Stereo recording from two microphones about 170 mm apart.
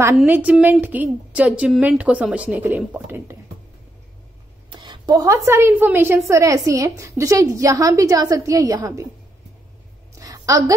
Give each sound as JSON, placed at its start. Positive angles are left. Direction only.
{"t": 0.1, "sound": "a woman's voice", "side_deg": -5}
{"t": 4.6, "sound": "a woman's voice", "side_deg": -25}
{"t": 10.1, "sound": "a sound", "side_deg": -20}